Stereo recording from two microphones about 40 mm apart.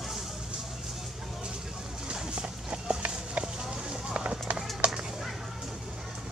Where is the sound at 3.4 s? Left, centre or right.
Centre.